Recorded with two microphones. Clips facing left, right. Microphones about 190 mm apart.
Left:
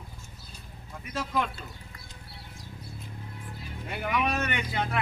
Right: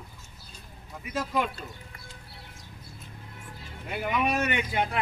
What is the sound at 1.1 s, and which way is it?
Speech, 5° right (ahead or behind).